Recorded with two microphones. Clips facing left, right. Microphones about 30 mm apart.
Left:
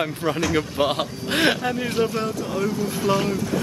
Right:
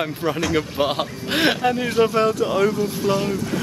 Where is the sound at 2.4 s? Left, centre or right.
Right.